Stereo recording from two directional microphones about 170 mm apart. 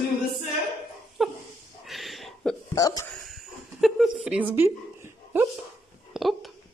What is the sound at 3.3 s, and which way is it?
Speech, centre (ahead or behind).